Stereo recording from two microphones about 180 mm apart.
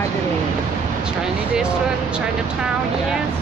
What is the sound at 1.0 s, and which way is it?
Speech, 5° right (ahead or behind).